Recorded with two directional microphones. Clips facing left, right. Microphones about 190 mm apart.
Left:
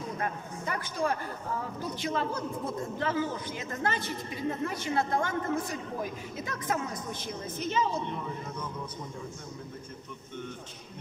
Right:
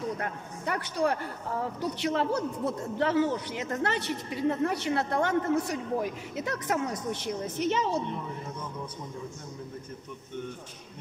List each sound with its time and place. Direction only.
0.2 s a man's voice: 70° right (ahead or behind)